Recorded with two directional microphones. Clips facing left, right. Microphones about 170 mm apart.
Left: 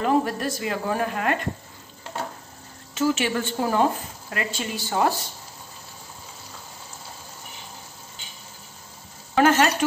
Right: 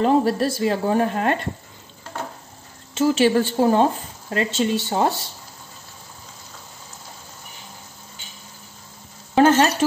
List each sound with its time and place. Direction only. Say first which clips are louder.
0.0 s speech: right 4 dB; 30° right (ahead or behind)
2.9 s speech: right 6 dB; 30° right (ahead or behind)
9.3 s a sound: right 3 dB; 30° right (ahead or behind)